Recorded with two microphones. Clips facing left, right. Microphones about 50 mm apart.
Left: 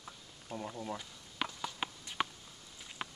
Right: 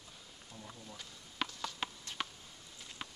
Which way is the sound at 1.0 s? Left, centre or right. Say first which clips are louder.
Left 1 dB; centre.